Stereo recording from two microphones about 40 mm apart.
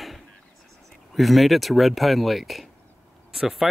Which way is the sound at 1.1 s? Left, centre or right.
Centre.